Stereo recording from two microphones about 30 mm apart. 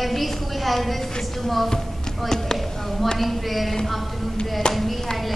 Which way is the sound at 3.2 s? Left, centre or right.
Centre.